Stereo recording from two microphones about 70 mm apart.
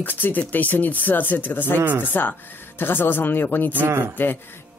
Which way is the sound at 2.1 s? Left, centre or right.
Left.